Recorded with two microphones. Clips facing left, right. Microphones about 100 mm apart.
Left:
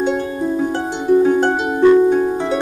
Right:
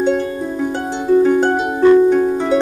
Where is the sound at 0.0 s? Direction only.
10° left (ahead or behind).